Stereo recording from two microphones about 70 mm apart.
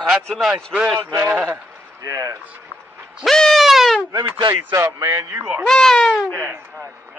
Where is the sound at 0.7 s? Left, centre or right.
Centre.